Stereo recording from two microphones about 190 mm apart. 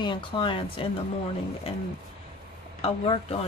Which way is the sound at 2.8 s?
30° left (ahead or behind).